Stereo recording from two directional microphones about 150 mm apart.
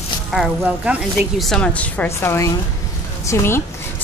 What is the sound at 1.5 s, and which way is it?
Speech, 10° left (ahead or behind).